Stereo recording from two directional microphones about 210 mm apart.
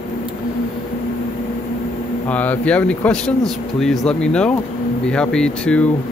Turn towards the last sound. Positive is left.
turn(degrees=5)  # may be behind; listen again after turning